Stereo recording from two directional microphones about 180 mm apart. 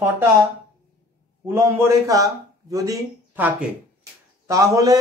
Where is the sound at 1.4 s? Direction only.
15° right (ahead or behind).